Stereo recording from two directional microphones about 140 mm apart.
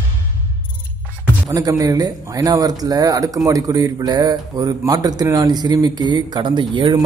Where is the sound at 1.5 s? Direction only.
25° right (ahead or behind).